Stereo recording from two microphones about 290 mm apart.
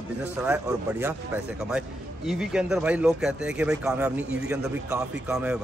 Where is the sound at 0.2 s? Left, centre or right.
Centre.